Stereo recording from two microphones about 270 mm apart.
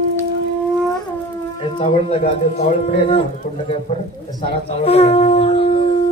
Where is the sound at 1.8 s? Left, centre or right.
Left.